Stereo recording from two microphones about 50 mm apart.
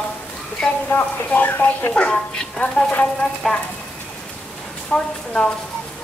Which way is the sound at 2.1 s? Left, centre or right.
Centre.